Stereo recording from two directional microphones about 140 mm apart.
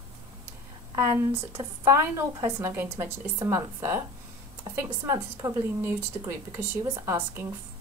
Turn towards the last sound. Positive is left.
turn(degrees=-20)  # may be behind; listen again after turning